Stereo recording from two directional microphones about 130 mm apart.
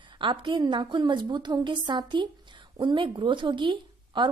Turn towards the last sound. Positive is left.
turn(degrees=-40)  # may be behind; listen again after turning